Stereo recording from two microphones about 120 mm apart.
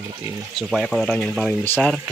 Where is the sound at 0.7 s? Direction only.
Centre (ahead or behind).